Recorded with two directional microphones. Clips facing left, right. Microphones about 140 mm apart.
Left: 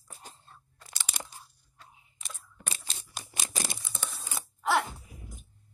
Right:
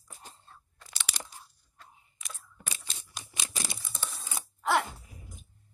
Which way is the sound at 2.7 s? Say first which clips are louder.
Left 2 dB; 35° left (ahead or behind).